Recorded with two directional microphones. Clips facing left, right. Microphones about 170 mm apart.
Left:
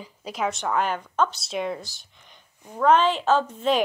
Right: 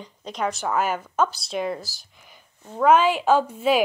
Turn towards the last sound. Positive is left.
turn(degrees=-10)  # may be behind; listen again after turning